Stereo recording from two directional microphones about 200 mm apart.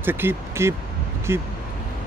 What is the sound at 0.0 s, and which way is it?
Speech, 10° right (ahead or behind).